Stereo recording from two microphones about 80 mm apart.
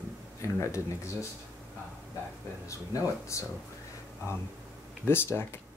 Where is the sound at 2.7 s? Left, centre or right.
Left.